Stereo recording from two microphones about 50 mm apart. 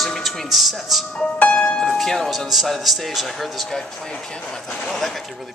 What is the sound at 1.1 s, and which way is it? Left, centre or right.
Speech, left.